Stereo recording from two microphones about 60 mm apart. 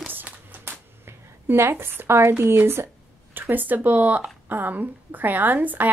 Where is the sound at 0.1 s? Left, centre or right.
Right.